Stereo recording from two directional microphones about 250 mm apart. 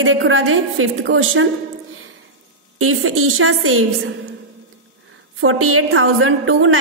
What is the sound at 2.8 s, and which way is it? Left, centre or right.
A woman's voice, right.